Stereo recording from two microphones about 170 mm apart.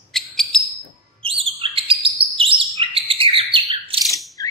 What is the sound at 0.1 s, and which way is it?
Bird, centre (ahead or behind).